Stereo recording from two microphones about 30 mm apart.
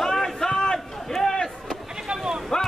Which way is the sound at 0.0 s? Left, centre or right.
Centre.